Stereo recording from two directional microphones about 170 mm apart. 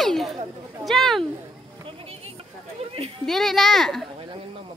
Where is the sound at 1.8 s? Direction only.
35° right (ahead or behind).